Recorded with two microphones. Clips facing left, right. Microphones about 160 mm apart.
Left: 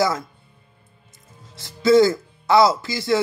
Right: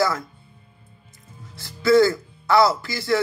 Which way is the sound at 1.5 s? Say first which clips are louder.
Left 2 dB; 20° left (ahead or behind).